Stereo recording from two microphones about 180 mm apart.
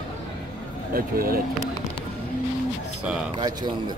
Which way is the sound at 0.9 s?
55° right (ahead or behind).